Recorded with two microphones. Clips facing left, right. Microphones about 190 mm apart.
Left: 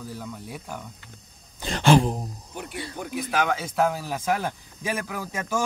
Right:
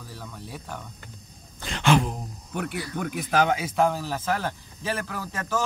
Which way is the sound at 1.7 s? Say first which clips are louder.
Left 3 dB; 35° left (ahead or behind).